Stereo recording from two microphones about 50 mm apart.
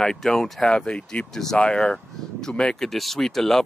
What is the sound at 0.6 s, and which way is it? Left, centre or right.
Speech, centre.